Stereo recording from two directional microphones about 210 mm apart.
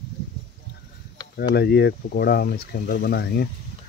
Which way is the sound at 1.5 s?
50° left (ahead or behind).